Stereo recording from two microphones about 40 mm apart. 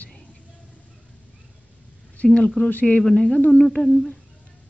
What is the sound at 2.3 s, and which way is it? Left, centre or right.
Speech, centre.